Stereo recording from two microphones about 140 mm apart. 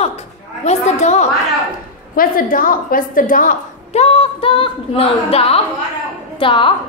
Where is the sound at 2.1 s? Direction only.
85° left.